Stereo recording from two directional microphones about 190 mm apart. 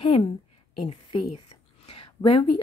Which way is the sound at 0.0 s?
30° left (ahead or behind).